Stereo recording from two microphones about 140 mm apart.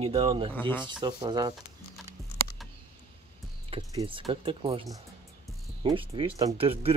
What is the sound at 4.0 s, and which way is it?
Speech, 40° right (ahead or behind).